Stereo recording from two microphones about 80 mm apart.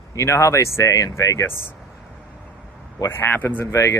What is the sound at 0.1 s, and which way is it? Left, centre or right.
Speech, left.